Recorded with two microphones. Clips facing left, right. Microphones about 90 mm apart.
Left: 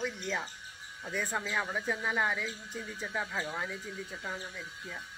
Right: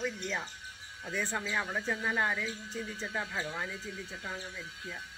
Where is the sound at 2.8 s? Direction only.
15° left (ahead or behind).